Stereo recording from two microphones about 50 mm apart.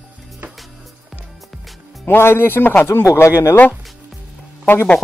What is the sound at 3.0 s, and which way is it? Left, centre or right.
Speech, left.